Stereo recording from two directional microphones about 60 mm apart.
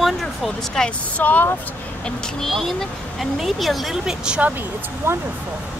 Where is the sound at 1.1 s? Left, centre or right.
Left.